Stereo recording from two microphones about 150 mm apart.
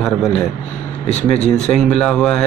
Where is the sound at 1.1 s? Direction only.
45° left (ahead or behind).